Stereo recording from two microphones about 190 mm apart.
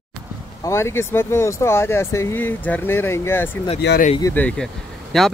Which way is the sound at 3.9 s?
65° left (ahead or behind).